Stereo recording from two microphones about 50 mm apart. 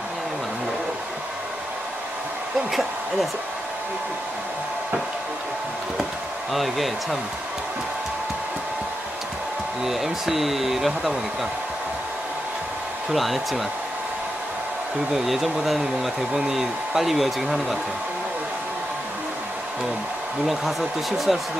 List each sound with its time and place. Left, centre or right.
2.7 s speech: centre
6.5 s speech: centre
9.8 s speech: centre
13.1 s speech: centre
15.1 s speech: centre
21.3 s speech: centre